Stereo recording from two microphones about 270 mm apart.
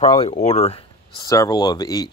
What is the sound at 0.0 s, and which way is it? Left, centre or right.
Speech, centre.